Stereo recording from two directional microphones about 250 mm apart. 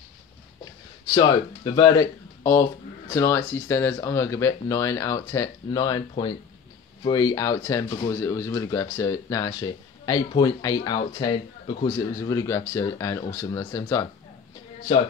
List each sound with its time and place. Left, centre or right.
1.1 s speech: centre